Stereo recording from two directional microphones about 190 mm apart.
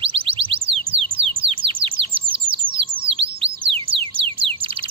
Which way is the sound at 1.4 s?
30° right (ahead or behind).